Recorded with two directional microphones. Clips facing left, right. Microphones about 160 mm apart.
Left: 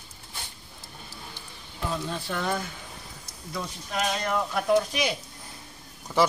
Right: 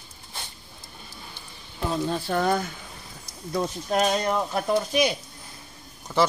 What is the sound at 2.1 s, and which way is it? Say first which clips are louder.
Speech: right 8 dB; 40° right (ahead or behind).